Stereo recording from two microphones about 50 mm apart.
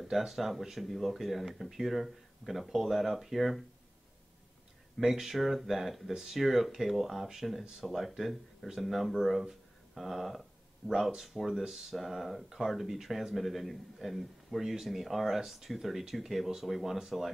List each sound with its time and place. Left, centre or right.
0.0 s speech: centre
4.9 s speech: centre